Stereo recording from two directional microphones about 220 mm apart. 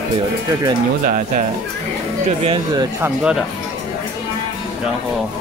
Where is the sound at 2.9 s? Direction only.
5° right (ahead or behind).